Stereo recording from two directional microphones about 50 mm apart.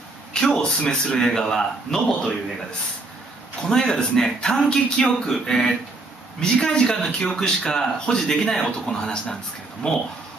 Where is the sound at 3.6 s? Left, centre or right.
Centre.